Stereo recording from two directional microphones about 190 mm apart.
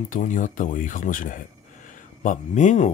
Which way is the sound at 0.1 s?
45° left (ahead or behind).